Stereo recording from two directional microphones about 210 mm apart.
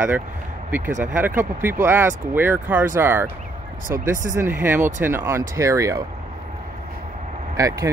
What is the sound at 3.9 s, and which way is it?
Speech, 40° right (ahead or behind).